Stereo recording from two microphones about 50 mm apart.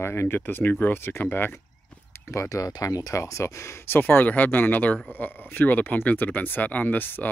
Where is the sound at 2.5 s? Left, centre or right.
Left.